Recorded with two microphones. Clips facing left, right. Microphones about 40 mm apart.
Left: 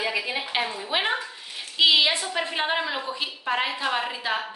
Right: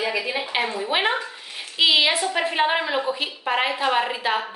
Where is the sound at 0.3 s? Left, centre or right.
Centre.